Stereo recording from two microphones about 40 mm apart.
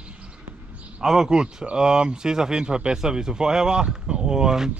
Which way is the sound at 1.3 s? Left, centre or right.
Right.